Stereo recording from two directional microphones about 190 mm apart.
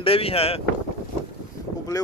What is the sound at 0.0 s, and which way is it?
Speech, 30° left (ahead or behind).